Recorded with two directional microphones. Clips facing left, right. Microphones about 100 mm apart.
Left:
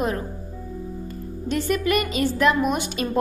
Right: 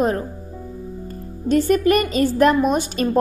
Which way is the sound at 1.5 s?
40° right (ahead or behind).